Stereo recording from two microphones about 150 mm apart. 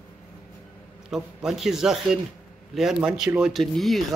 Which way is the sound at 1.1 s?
Centre (ahead or behind).